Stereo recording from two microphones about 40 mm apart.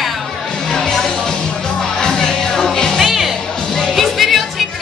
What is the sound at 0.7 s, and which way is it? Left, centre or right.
Music, centre.